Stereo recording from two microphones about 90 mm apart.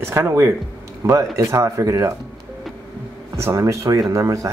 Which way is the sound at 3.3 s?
35° right (ahead or behind).